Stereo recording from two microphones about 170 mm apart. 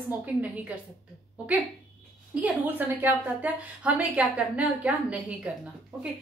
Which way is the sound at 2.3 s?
10° right (ahead or behind).